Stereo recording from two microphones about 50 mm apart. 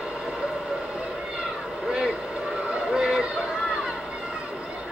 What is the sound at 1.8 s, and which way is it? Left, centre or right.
Vehicle, centre.